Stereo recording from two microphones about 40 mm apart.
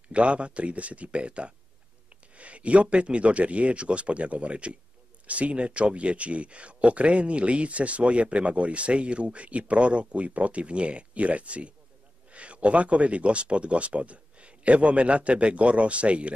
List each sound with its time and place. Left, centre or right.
0.1 s speech: right